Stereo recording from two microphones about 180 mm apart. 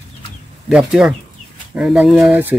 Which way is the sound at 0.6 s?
5° right (ahead or behind).